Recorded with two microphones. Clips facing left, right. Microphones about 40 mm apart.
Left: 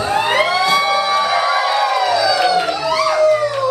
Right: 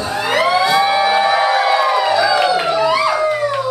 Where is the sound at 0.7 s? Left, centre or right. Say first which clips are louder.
Right 2 dB; centre.